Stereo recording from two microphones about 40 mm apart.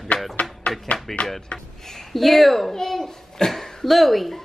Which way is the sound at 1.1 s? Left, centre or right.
Centre.